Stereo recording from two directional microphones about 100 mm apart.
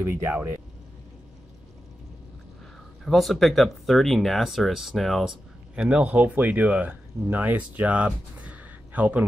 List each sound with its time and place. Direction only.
0.0 s speech: 20° right (ahead or behind)
3.1 s speech: centre (ahead or behind); by 9.2 s 15° right (ahead or behind)